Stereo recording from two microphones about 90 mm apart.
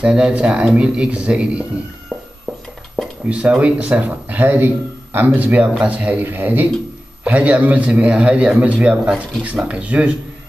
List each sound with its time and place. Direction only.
0.0 s a man's voice: 10° right (ahead or behind)
3.3 s a man's voice: 15° right (ahead or behind)